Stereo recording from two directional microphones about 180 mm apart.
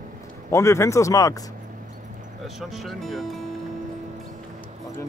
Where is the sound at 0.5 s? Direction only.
15° left (ahead or behind).